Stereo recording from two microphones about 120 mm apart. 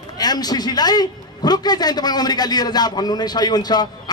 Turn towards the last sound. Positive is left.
turn(degrees=35)  # may be behind; listen again after turning